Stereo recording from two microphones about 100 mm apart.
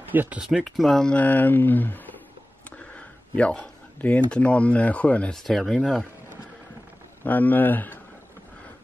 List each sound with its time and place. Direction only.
0.1 s speech: 15° right (ahead or behind)
0.5 s speech: centre (ahead or behind)
5.3 s speech: centre (ahead or behind)
7.2 s speech: 20° left (ahead or behind)